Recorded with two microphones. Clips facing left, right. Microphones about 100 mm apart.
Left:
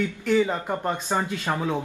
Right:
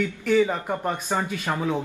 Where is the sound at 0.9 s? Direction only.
15° left (ahead or behind).